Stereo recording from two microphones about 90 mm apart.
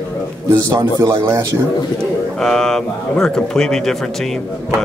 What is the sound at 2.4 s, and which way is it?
Speech, 5° left (ahead or behind).